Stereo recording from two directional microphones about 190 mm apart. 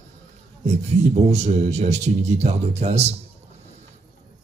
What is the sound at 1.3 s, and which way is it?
Speech, 35° right (ahead or behind).